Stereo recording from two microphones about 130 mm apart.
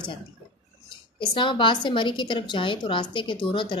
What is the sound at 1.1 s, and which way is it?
A woman's voice, 40° left (ahead or behind).